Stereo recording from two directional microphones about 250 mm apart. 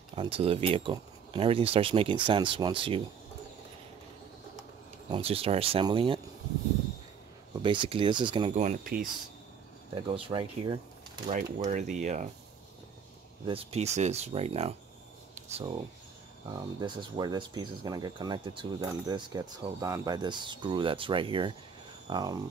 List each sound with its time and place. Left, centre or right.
0.1 s speech: right
5.1 s speech: right
7.6 s speech: centre
10.0 s speech: right
13.5 s speech: right
15.3 s a sound: right
16.4 s speech: centre